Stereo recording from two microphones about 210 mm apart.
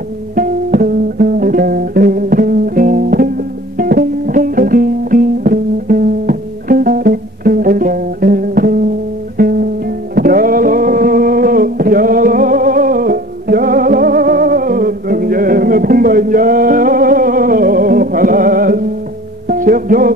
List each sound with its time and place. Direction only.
0.4 s music: 40° right (ahead or behind)